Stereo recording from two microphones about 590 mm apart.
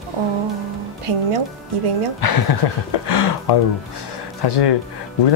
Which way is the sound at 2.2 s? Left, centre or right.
Left.